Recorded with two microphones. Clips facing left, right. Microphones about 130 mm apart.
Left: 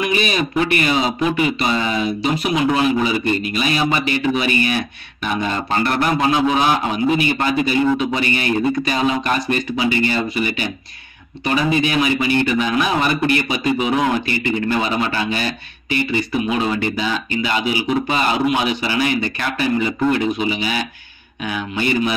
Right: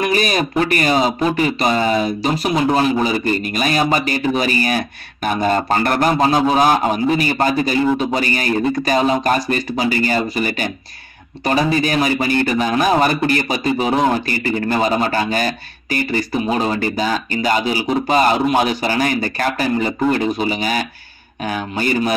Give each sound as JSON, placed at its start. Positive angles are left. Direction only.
{"t": 0.0, "sound": "a man's voice", "side_deg": -40}